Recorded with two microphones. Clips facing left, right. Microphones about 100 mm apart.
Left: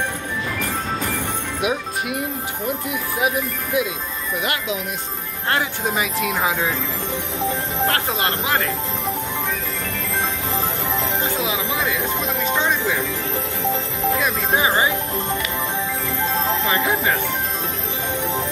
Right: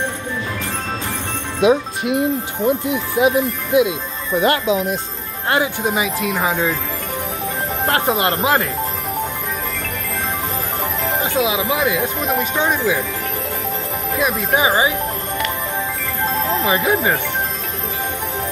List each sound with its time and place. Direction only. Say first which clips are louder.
1.6 s speech: right 9 dB; 25° right (ahead or behind)
4.4 s speech: right 10 dB; 35° right (ahead or behind)
5.5 s speech: right 4 dB; 15° right (ahead or behind)
6.1 s speech: right 2 dB; centre (ahead or behind)
7.9 s speech: right 5 dB; 25° right (ahead or behind)
11.3 s speech: right 5 dB; 15° right (ahead or behind)
14.2 s speech: right 7 dB; 15° right (ahead or behind)
16.7 s speech: right 5 dB; 20° right (ahead or behind)